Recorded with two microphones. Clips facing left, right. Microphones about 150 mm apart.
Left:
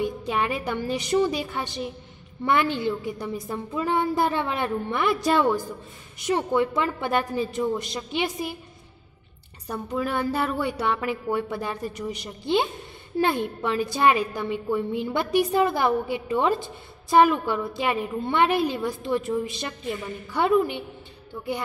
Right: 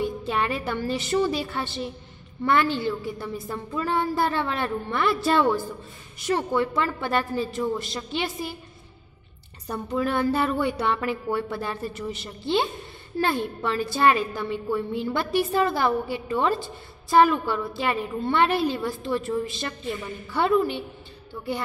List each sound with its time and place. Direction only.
0.0 s a woman's voice: 15° left (ahead or behind)
9.7 s a woman's voice: 10° left (ahead or behind)